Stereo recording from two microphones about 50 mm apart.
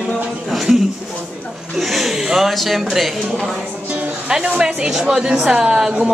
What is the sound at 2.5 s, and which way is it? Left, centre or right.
Speech, centre.